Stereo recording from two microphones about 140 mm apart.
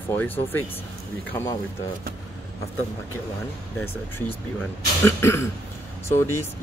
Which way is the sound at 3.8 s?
15° left (ahead or behind).